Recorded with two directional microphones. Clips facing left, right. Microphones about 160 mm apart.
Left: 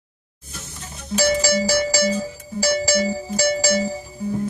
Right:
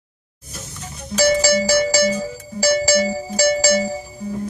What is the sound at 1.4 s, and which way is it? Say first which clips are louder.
Music: right 3 dB; 75° right (ahead or behind).